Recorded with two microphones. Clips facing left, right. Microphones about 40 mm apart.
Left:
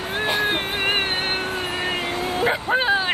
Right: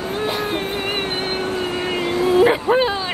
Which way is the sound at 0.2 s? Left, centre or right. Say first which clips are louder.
Left 2 dB; left.